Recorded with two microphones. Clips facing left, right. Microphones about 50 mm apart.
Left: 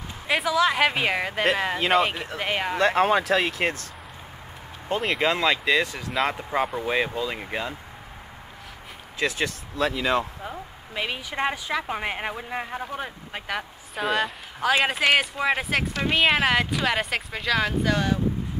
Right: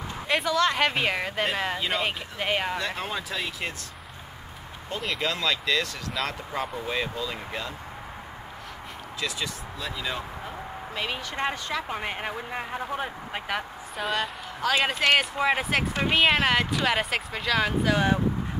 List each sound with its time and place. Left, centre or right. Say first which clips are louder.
0.3 s speech: left 2 dB; centre
1.8 s speech: left 7 dB; left
2.0 s speech: left 1 dB; centre
2.8 s speech: left 11 dB; left
5.1 s speech: left 4 dB; left
9.8 s speech: left 10 dB; left
11.0 s speech: left 3 dB; centre
12.8 s speech: right 2 dB; centre